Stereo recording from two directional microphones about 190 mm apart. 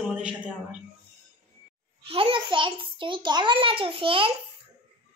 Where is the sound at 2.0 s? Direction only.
30° right (ahead or behind).